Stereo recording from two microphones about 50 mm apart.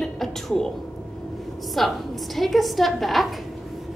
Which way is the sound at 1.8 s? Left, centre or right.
Centre.